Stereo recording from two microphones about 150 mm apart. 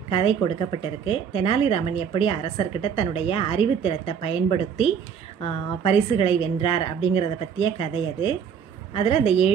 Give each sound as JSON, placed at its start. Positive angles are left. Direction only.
{"t": 0.1, "sound": "speech", "side_deg": 35}